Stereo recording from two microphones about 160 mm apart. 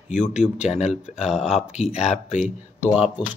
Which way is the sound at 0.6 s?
45° left (ahead or behind).